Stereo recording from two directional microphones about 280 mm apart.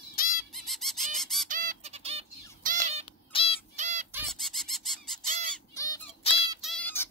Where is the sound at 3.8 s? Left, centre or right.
Right.